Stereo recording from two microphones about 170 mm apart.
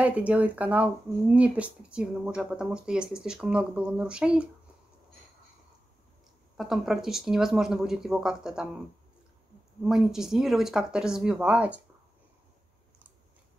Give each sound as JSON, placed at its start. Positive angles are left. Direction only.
{"t": 0.0, "sound": "speech", "side_deg": -5}
{"t": 6.5, "sound": "speech", "side_deg": 0}
{"t": 9.8, "sound": "speech", "side_deg": 0}